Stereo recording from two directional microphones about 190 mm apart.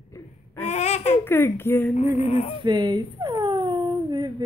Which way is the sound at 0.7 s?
35° left (ahead or behind).